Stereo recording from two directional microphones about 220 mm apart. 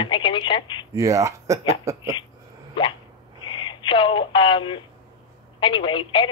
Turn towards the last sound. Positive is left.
turn(degrees=20)  # may be behind; listen again after turning